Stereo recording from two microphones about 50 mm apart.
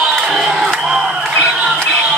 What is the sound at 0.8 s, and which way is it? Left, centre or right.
Crowd, centre.